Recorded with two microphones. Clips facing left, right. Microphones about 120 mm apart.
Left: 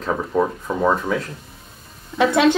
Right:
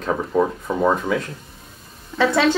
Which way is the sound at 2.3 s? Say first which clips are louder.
Left 3 dB; 20° left (ahead or behind).